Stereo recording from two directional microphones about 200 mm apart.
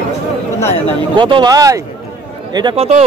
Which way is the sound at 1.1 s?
25° right (ahead or behind).